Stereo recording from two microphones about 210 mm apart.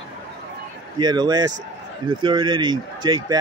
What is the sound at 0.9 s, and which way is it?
Speech, 20° right (ahead or behind).